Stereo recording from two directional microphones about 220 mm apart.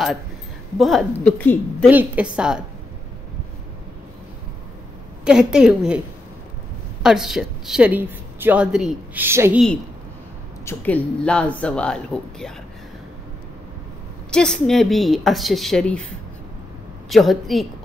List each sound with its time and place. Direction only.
0.7 s a woman's voice: centre (ahead or behind)
1.9 s a woman's voice: 5° right (ahead or behind)
5.2 s a woman's voice: 5° right (ahead or behind)
7.0 s a woman's voice: centre (ahead or behind)
10.6 s a woman's voice: 10° left (ahead or behind)
14.3 s a woman's voice: centre (ahead or behind)
17.1 s a woman's voice: centre (ahead or behind)